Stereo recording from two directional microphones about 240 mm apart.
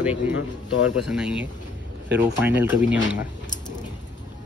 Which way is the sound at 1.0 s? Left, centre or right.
Centre.